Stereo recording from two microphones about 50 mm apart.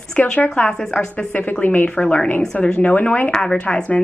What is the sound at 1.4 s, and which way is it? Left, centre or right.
Speech, left.